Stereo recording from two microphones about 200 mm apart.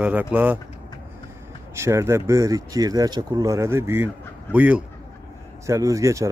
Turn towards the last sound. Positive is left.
turn(degrees=-15)  # may be behind; listen again after turning